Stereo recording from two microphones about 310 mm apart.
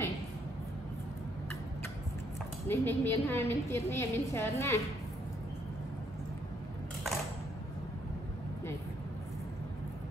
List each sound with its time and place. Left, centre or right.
2.7 s a woman's voice: centre